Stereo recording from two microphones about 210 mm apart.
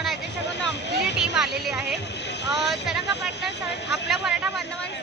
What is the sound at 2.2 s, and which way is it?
Speech, 55° left (ahead or behind).